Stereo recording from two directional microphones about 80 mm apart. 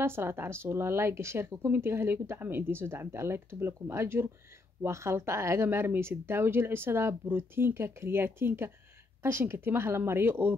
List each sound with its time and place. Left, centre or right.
0.0 s speech: right